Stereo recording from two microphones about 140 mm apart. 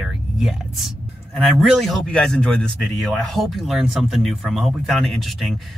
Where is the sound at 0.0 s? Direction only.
5° right (ahead or behind).